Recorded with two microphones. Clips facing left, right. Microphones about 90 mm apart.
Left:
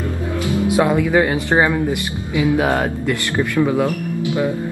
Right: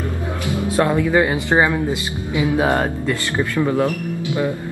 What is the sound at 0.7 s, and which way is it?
Speech, 15° left (ahead or behind).